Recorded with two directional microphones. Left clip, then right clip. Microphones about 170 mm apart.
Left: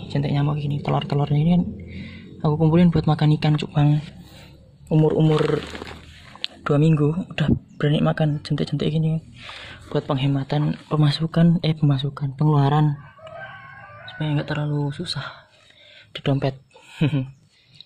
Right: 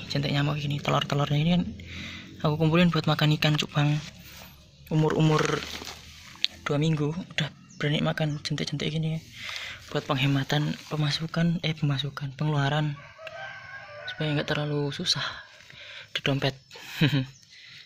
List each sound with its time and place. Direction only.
0.0 s speech: 10° left (ahead or behind)
5.0 s speech: 10° right (ahead or behind)
6.4 s speech: 30° left (ahead or behind); by 10.7 s centre (ahead or behind)
10.7 s speech: 15° left (ahead or behind)
11.3 s speech: 25° left (ahead or behind)
14.0 s speech: 10° right (ahead or behind)
16.1 s speech: 15° left (ahead or behind)
16.9 s speech: 5° right (ahead or behind)